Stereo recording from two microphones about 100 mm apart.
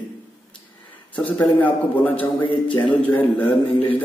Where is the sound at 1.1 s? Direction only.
15° left (ahead or behind).